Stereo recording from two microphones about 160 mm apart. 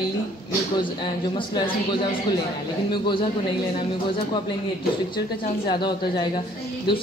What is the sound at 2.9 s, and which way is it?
Speech, 30° left (ahead or behind).